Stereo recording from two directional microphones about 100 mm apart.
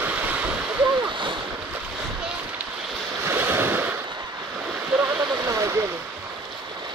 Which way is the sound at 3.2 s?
25° right (ahead or behind).